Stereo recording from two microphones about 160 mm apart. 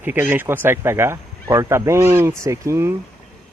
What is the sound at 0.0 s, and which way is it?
Speech, 10° right (ahead or behind).